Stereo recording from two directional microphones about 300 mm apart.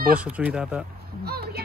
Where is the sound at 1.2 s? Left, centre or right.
Right.